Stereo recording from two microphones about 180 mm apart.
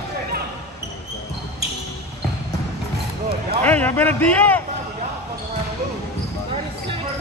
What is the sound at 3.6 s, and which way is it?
A man's voice, 10° left (ahead or behind).